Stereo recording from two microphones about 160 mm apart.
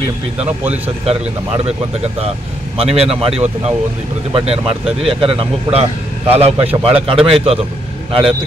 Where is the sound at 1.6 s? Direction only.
40° right (ahead or behind).